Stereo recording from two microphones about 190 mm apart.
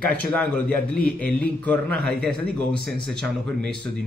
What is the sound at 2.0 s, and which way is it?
Speech, 55° right (ahead or behind).